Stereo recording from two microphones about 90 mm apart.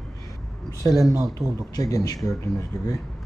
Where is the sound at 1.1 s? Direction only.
35° right (ahead or behind).